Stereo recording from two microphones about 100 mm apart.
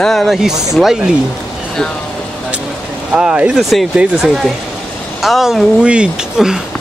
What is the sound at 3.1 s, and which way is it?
Speech, 10° right (ahead or behind).